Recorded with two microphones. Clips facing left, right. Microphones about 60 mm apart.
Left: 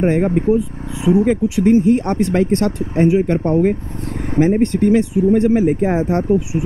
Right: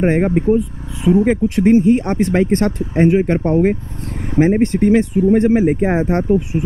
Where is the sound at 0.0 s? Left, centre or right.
Right.